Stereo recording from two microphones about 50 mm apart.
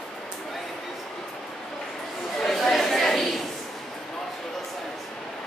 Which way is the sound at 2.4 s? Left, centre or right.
Centre.